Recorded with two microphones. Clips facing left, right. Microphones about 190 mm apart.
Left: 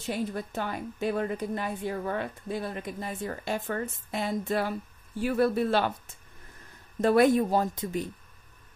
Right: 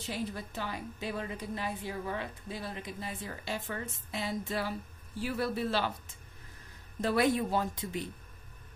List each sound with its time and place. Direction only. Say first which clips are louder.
0.0 s a woman's voice: left 6 dB; 50° left (ahead or behind)
7.0 s a woman's voice: left 7 dB; 50° left (ahead or behind)